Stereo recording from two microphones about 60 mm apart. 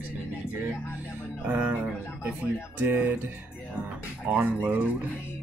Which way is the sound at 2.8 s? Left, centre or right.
Right.